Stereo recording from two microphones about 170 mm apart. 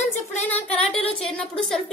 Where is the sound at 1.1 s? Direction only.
5° left (ahead or behind).